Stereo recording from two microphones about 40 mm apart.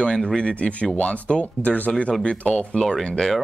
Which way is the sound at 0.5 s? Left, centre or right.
Left.